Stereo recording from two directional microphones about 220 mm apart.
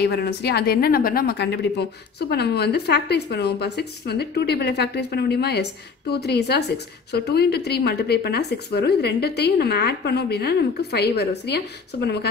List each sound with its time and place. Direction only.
0.0 s a woman's voice: 50° left (ahead or behind)